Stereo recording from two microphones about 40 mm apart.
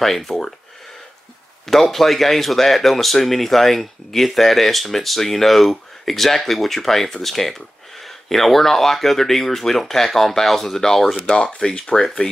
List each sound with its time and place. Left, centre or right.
0.0 s speech: centre
1.7 s speech: centre
11.3 s speech: left